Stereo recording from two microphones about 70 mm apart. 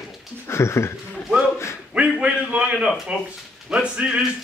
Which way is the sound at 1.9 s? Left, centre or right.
Centre.